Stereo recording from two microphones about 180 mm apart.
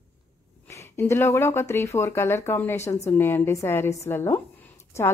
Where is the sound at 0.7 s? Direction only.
15° left (ahead or behind).